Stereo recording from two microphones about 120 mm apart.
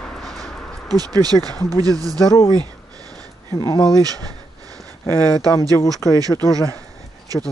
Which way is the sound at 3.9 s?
30° right (ahead or behind).